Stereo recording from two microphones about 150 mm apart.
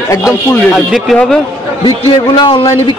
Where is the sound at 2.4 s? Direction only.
35° left (ahead or behind).